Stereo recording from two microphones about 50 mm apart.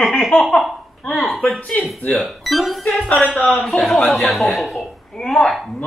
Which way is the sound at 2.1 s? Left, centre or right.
Centre.